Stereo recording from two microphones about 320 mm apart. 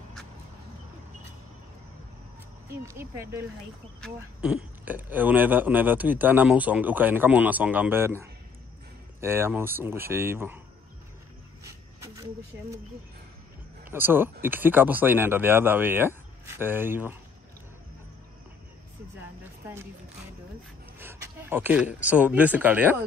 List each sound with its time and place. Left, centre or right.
2.7 s speech: centre
11.6 s a sound: centre
13.8 s speech: centre
21.0 s speech: centre